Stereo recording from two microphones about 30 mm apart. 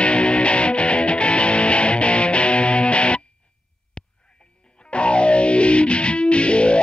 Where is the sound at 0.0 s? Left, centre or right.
Left.